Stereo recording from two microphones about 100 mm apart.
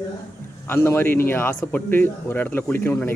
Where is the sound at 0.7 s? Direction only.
20° left (ahead or behind).